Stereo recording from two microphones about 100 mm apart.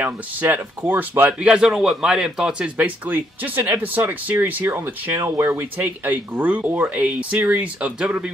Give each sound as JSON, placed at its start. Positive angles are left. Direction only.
{"t": 0.0, "sound": "speech", "side_deg": -20}
{"t": 1.5, "sound": "a man's voice", "side_deg": -5}
{"t": 2.8, "sound": "speech", "side_deg": -15}